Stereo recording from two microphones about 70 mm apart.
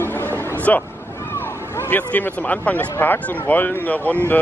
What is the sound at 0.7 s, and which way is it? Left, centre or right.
Speech, left.